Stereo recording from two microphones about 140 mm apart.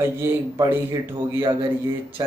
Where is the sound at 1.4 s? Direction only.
30° right (ahead or behind).